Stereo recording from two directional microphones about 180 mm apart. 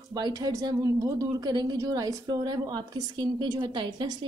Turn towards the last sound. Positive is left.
turn(degrees=-25)  # may be behind; listen again after turning